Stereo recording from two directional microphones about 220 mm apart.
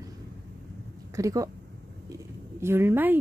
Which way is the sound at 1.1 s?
15° right (ahead or behind).